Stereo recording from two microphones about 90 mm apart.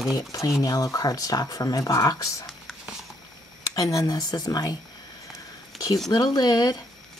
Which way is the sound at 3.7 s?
40° left (ahead or behind).